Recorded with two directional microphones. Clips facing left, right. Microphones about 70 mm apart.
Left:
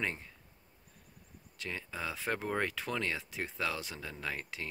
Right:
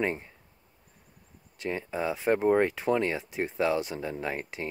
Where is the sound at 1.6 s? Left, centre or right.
Right.